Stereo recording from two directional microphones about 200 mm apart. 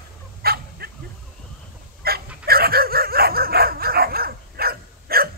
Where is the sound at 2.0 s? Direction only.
50° right (ahead or behind).